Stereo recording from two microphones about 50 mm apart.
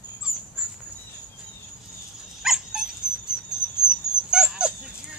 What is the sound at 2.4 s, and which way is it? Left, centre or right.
Dog, centre.